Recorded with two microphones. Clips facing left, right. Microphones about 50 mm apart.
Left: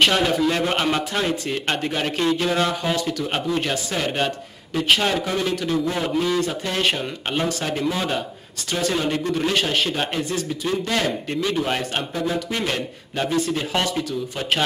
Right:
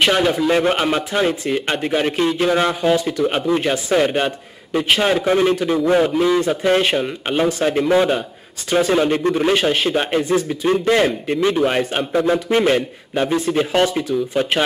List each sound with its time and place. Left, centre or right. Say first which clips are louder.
0.0 s a man's voice: right 2 dB; centre
5.2 s a man's voice: right 8 dB; right
6.0 s a man's voice: right 5 dB; centre
12.1 s a man's voice: right 8 dB; right